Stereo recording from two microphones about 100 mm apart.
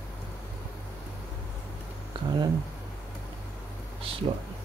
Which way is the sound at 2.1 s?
60° right (ahead or behind).